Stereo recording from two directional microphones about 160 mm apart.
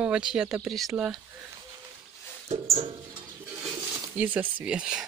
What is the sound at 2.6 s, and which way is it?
Music, 35° right (ahead or behind).